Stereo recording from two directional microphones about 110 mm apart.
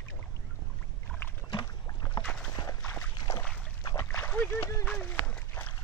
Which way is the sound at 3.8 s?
30° left (ahead or behind).